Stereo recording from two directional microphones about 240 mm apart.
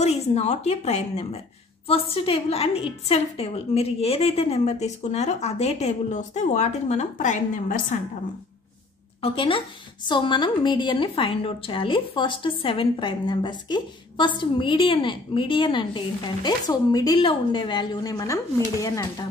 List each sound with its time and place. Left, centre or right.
0.0 s a woman's voice: left
9.2 s a woman's voice: left